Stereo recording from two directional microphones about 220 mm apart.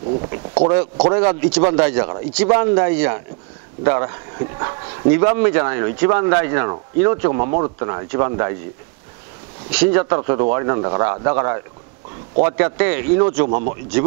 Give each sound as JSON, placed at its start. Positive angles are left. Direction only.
{"t": 0.0, "sound": "speech", "side_deg": -35}
{"t": 9.7, "sound": "speech", "side_deg": -10}
{"t": 10.0, "sound": "speech", "side_deg": -25}